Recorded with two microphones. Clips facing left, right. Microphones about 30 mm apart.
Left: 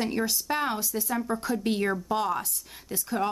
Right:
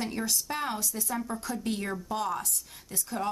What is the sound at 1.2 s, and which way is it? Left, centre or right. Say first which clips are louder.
A woman's voice: left 5 dB; left.